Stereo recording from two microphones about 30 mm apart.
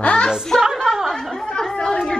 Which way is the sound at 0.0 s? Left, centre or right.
Left.